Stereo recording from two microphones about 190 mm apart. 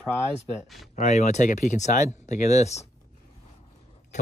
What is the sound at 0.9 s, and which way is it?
Speech, 35° left (ahead or behind).